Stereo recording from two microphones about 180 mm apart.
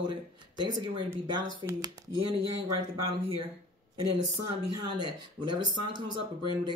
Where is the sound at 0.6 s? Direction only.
25° right (ahead or behind).